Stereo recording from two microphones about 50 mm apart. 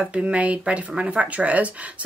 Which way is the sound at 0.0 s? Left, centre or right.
Right.